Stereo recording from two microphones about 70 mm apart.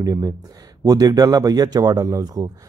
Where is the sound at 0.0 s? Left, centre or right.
Right.